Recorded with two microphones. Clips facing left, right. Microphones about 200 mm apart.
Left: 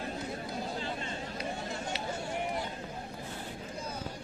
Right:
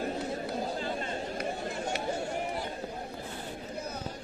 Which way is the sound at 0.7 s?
50° right (ahead or behind).